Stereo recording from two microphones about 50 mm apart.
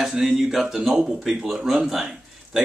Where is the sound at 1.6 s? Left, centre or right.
Centre.